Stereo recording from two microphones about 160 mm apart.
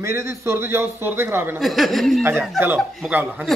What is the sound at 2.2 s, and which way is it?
Speech, 10° right (ahead or behind).